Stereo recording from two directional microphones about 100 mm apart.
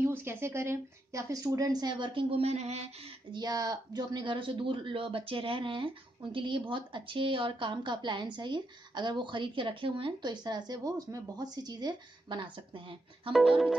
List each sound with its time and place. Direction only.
0.0 s a woman's voice: 25° right (ahead or behind); by 3.2 s 90° right
3.3 s a woman's voice: 40° right (ahead or behind); by 13.3 s 60° right (ahead or behind)
13.3 s music: centre (ahead or behind)